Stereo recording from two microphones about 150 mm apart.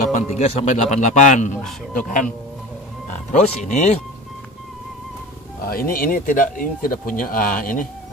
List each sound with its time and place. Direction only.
0.1 s a man's voice: 50° left (ahead or behind)
3.1 s speech: 55° left (ahead or behind)
5.7 s speech: 75° left (ahead or behind)